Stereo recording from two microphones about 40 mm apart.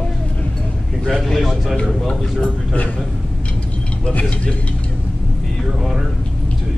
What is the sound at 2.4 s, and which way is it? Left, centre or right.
Speech, left.